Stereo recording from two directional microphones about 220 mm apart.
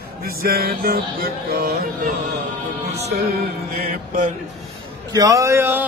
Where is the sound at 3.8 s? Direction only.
40° right (ahead or behind).